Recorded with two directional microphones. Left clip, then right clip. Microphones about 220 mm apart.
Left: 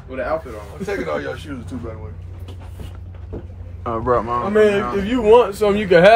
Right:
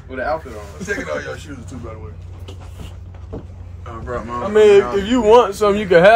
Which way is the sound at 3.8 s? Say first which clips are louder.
Left 9 dB; 25° left (ahead or behind).